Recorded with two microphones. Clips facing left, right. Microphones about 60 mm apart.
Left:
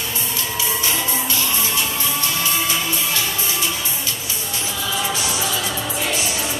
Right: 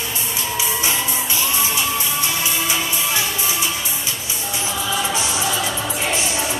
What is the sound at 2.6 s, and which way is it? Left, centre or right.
Music, centre.